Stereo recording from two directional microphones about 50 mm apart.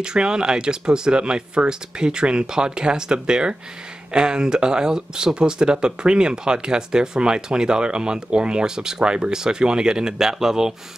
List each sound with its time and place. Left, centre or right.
0.0 s speech: centre